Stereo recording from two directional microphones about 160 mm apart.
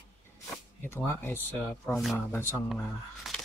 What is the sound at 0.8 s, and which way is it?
Speech, 15° left (ahead or behind).